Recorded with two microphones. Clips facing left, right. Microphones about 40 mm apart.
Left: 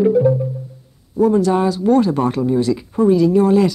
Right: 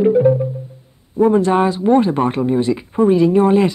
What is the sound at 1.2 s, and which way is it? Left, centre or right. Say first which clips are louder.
Speech: right 1 dB; right.